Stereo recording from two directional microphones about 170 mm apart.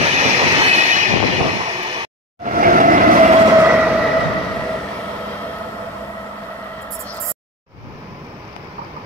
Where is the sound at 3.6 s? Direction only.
5° right (ahead or behind).